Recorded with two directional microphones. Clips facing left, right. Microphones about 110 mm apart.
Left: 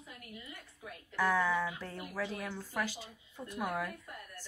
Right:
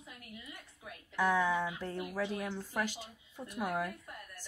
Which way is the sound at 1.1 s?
20° right (ahead or behind).